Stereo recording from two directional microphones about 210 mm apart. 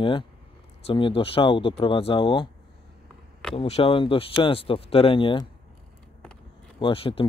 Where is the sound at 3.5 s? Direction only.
30° left (ahead or behind).